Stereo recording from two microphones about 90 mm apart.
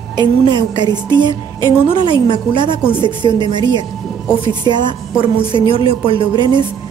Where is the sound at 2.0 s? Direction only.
60° right (ahead or behind).